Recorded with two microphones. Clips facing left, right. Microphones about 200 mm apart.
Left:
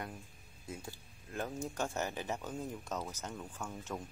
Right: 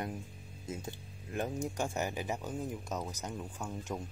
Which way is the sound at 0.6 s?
20° right (ahead or behind).